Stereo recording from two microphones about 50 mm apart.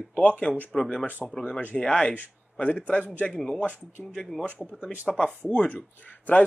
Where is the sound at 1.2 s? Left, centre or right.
Centre.